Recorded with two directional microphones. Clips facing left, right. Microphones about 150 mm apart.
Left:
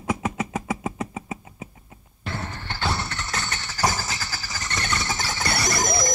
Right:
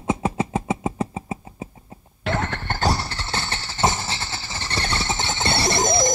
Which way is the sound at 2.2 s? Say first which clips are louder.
Right 8 dB; 85° right.